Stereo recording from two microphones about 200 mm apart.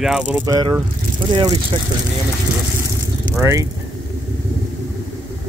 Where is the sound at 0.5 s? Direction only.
20° right (ahead or behind).